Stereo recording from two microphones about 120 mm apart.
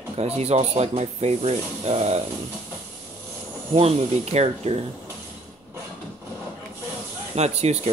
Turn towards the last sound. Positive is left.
turn(degrees=-65)  # may be behind; listen again after turning